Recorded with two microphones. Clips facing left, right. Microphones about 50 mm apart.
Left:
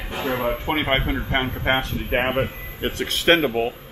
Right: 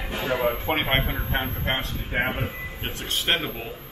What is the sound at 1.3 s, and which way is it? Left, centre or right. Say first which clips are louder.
Speech: left 5 dB; left.